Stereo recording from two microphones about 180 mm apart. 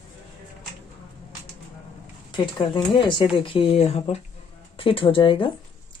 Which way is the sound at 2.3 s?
25° left (ahead or behind).